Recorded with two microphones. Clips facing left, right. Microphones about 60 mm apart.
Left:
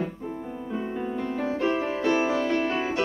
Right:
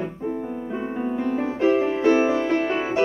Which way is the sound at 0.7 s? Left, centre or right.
Right.